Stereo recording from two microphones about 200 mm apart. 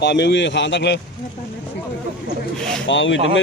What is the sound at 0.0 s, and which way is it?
A man's voice, 60° left (ahead or behind).